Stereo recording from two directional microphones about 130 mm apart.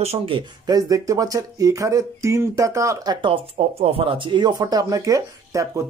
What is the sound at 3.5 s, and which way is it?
Speech, 50° right (ahead or behind).